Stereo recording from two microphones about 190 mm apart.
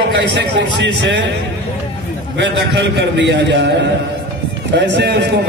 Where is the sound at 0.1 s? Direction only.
65° right (ahead or behind).